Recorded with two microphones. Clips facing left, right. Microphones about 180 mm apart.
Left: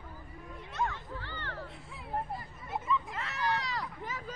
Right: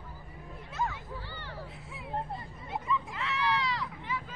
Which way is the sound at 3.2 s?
45° left (ahead or behind).